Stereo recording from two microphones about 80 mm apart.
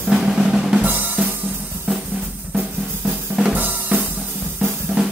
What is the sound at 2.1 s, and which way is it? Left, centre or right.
Drum, right.